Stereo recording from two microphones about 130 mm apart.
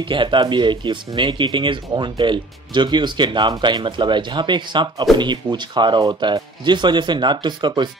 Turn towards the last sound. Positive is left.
turn(degrees=-35)  # may be behind; listen again after turning